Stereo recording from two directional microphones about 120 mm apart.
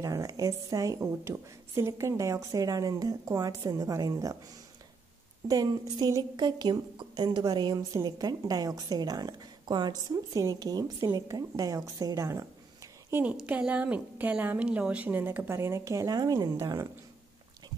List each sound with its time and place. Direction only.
0.0 s a woman's voice: 30° right (ahead or behind)
5.5 s a woman's voice: 35° right (ahead or behind)
13.1 s a woman's voice: 10° right (ahead or behind); by 16.8 s 30° right (ahead or behind)